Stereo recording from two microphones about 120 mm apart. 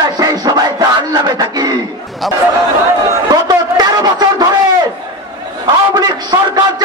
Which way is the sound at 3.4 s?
35° right (ahead or behind).